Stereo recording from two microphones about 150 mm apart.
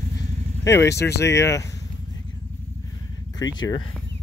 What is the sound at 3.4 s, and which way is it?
Speech, 25° left (ahead or behind).